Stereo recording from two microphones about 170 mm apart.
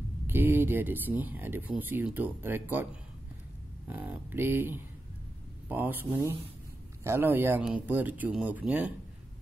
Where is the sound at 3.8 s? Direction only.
10° right (ahead or behind).